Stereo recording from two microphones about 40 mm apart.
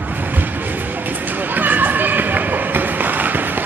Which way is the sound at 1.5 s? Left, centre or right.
Right.